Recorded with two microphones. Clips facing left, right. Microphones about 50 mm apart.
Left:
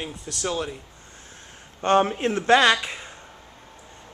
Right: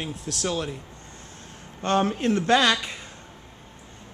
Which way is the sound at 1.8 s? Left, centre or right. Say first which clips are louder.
Left 3 dB; left.